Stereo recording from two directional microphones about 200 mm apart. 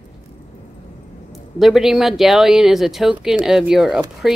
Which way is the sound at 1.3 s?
Centre (ahead or behind).